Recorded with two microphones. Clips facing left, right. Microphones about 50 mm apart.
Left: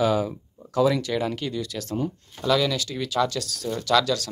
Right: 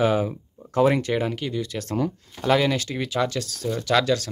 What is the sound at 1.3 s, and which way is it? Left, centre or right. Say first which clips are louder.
Speech: right 1 dB; centre.